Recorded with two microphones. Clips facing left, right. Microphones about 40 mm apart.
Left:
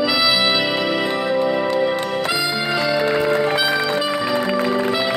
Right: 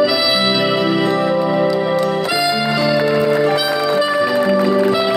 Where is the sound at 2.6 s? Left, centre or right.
Left.